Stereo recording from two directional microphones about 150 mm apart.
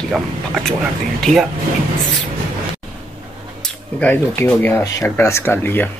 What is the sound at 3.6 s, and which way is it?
Speech, 10° left (ahead or behind).